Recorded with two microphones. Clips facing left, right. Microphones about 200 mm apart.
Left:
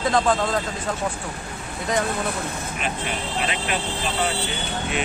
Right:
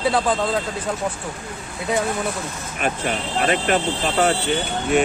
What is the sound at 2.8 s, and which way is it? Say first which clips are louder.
Speech: right 6 dB; 50° right (ahead or behind).